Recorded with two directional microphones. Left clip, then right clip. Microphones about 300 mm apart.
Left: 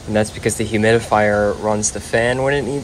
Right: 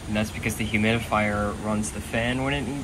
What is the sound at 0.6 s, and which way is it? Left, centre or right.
Speech, left.